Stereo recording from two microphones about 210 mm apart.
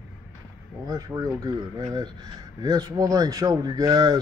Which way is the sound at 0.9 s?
15° right (ahead or behind).